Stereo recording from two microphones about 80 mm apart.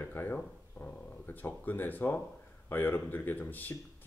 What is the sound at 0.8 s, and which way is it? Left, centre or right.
Speech, left.